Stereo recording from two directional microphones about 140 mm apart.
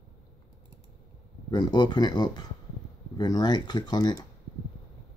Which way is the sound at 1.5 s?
30° left (ahead or behind).